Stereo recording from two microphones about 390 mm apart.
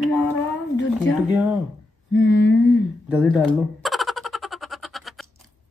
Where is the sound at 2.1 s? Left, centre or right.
Left.